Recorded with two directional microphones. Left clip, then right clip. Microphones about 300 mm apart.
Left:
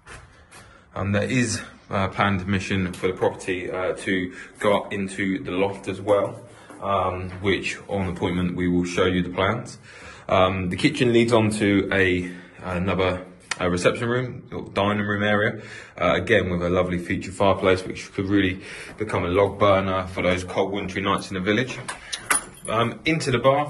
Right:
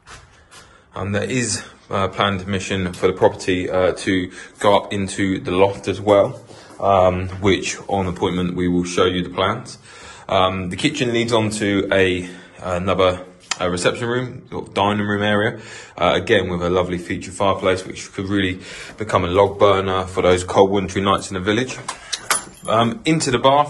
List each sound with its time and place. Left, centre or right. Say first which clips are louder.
0.9 s speech: right 2 dB; centre
3.2 s speech: right 7 dB; right
7.4 s speech: right 5 dB; centre
21.1 s speech: right 4 dB; centre